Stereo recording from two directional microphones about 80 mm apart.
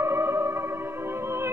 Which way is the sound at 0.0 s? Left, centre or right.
Right.